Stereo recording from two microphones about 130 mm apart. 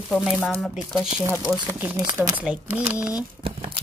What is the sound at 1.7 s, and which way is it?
Speech, 10° right (ahead or behind).